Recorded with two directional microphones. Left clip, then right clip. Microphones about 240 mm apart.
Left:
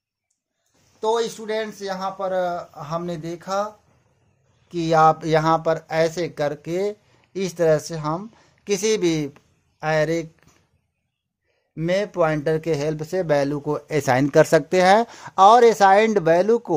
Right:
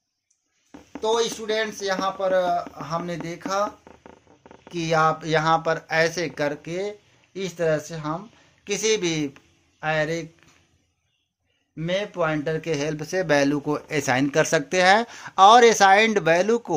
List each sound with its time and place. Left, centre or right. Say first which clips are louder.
1.0 s speech: left 1 dB; centre; by 10.5 s left
11.7 s speech: left 4 dB; left; by 16.7 s centre